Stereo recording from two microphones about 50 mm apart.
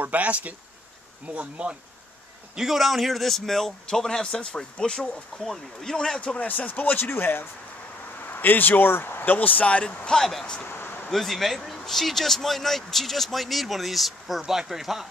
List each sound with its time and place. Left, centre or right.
0.0 s speech: right
2.5 s speech: centre
5.4 s speech: centre; by 9.8 s left
10.1 s speech: centre
10.7 s a sound: left
11.1 s speech: centre